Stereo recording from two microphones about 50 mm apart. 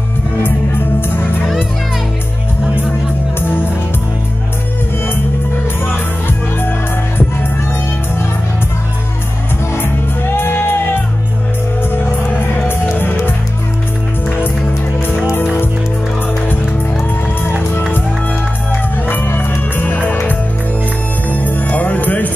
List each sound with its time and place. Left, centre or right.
3.3 s music: left
5.9 s music: left
10.3 s music: left
12.6 s music: left
18.7 s music: left